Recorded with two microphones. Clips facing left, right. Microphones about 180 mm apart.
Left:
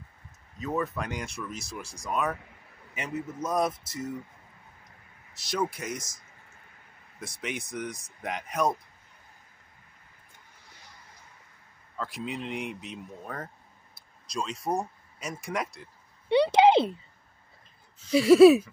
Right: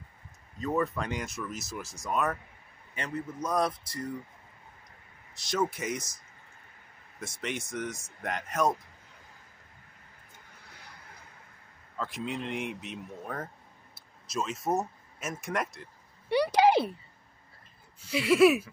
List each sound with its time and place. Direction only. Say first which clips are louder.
0.6 s a man's voice: right 1 dB; centre (ahead or behind)
5.5 s speech: right 1 dB; 5° right (ahead or behind)
7.2 s speech: even; centre (ahead or behind)
12.0 s speech: even; centre (ahead or behind)
16.3 s a sound: left 3 dB; 25° left (ahead or behind)
18.1 s a sound: left 7 dB; 35° left (ahead or behind)